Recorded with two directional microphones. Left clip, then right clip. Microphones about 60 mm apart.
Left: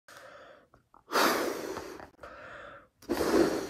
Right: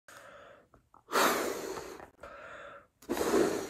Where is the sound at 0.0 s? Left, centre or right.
Left.